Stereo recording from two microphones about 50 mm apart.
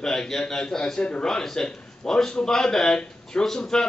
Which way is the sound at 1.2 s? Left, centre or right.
Centre.